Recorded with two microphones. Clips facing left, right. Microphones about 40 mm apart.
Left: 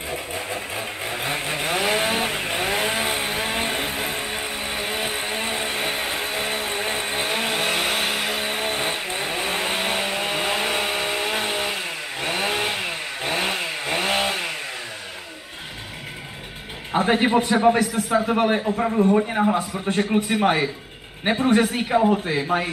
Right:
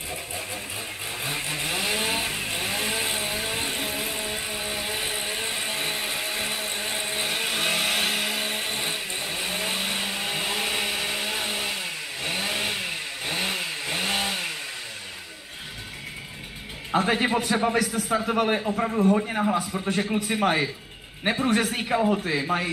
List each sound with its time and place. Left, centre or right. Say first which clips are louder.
0.3 s chainsaw: left 5 dB; left
3.4 s vehicle: left 4 dB; left
16.9 s a man's voice: left 4 dB; centre